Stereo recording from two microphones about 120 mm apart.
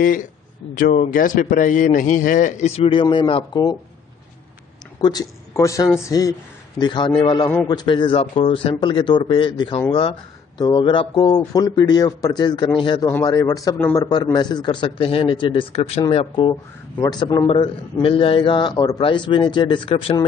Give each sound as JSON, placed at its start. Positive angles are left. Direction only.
{"t": 0.9, "sound": "a man's voice", "side_deg": 90}
{"t": 5.5, "sound": "speech", "side_deg": 25}
{"t": 6.8, "sound": "a man's voice", "side_deg": 40}
{"t": 17.0, "sound": "speech", "side_deg": 35}
{"t": 18.0, "sound": "a man's voice", "side_deg": 50}